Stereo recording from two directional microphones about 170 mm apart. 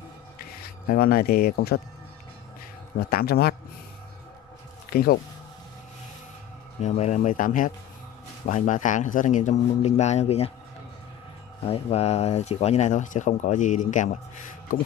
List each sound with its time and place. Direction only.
0.8 s speech: 60° left (ahead or behind)
3.0 s a man's voice: 65° left (ahead or behind)
4.9 s speech: 65° left (ahead or behind)
6.8 s speech: 45° left (ahead or behind)
11.6 s speech: 35° left (ahead or behind)